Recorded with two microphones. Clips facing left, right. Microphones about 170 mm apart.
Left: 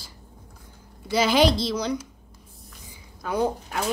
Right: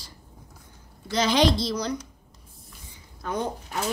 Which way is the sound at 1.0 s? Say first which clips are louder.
Left 2 dB; 5° left (ahead or behind).